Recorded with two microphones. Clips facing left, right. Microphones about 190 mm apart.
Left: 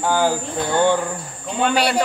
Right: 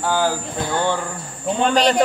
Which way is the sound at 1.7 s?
10° left (ahead or behind).